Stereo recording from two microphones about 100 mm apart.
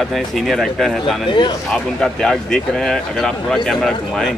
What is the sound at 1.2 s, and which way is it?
Speech, 50° left (ahead or behind).